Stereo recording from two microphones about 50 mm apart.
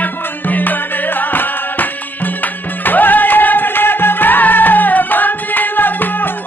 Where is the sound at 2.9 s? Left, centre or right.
Left.